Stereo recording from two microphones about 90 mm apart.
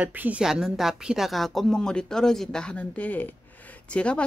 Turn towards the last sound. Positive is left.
turn(degrees=15)  # may be behind; listen again after turning